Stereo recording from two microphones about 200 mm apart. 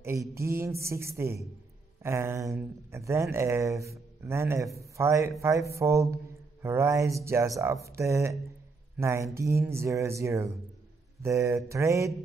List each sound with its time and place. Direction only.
0.0 s speech: 15° right (ahead or behind)